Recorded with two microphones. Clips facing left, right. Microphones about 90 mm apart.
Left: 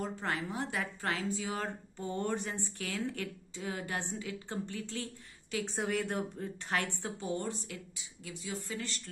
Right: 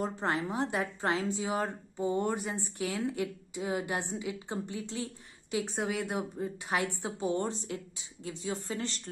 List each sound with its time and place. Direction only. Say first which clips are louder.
0.0 s a woman's voice: right 4 dB; 25° right (ahead or behind)
5.8 s a woman's voice: left 2 dB; 5° right (ahead or behind)
7.3 s speech: right 5 dB; 25° right (ahead or behind)